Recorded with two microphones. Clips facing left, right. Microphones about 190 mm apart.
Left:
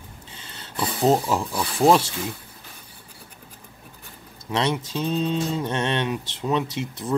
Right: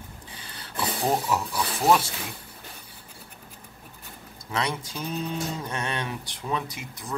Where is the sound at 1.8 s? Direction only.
25° left (ahead or behind).